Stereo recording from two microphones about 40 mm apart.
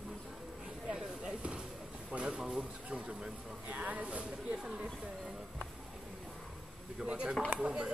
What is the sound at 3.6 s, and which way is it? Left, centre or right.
Speech, right.